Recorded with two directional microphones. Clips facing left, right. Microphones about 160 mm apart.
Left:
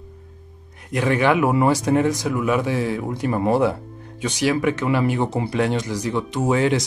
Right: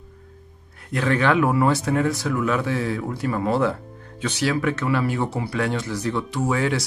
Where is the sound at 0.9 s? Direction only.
15° left (ahead or behind).